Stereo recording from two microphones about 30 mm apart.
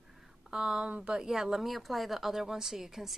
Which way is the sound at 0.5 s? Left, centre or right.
Right.